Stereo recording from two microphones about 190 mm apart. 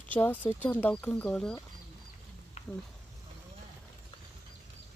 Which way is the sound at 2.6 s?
35° left (ahead or behind).